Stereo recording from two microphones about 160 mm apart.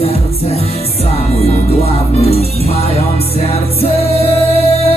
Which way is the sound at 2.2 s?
40° left (ahead or behind).